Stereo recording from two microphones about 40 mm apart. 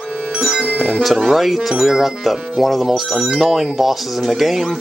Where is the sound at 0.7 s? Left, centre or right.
Right.